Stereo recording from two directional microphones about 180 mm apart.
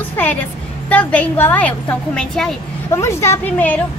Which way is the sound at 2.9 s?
15° left (ahead or behind).